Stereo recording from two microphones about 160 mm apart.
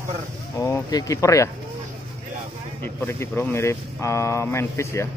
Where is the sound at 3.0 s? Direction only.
15° left (ahead or behind).